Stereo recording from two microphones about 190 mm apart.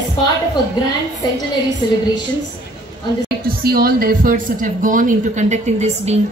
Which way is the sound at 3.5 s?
50° right (ahead or behind).